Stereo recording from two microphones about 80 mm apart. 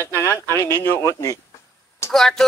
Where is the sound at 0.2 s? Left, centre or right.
Left.